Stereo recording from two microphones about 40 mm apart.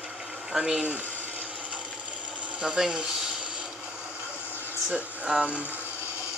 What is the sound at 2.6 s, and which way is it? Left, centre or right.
Speech, centre.